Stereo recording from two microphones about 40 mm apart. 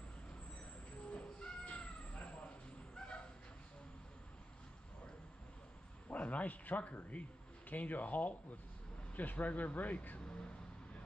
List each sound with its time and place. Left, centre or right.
1.1 s cat: left
6.0 s speech: left